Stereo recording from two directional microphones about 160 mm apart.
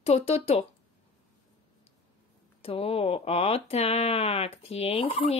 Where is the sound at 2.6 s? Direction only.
35° left (ahead or behind).